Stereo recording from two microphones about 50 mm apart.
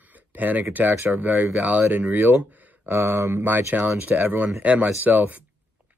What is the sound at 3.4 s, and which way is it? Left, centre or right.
Speech, right.